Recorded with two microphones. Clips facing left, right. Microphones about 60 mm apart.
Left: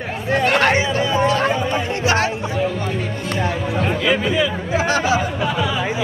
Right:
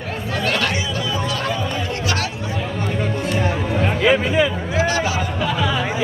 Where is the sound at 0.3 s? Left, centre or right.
Left.